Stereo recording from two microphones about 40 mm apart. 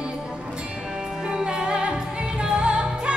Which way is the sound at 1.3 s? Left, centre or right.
Centre.